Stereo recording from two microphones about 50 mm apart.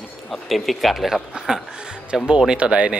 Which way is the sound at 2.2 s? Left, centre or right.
Centre.